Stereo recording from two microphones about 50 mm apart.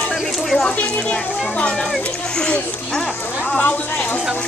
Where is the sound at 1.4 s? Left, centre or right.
Left.